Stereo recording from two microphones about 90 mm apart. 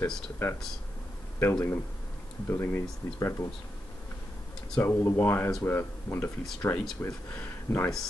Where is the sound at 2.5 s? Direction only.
30° left (ahead or behind).